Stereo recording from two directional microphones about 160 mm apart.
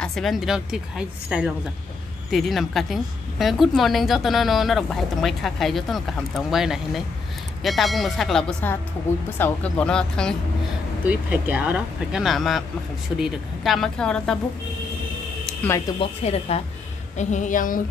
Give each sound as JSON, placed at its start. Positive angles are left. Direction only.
{"t": 0.0, "sound": "a woman's voice", "side_deg": 0}
{"t": 11.1, "sound": "a woman's voice", "side_deg": -10}
{"t": 16.0, "sound": "speech", "side_deg": 40}
{"t": 17.2, "sound": "speech", "side_deg": 50}